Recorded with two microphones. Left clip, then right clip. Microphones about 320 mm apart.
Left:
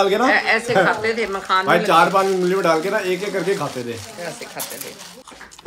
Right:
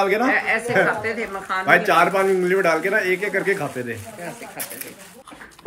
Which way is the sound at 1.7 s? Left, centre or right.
Centre.